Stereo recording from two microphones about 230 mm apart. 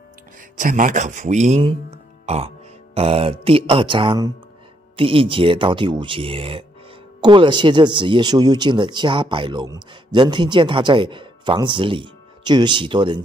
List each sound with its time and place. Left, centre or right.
0.6 s speech: right